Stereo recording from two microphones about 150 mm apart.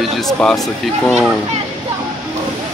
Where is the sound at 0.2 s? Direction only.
5° left (ahead or behind).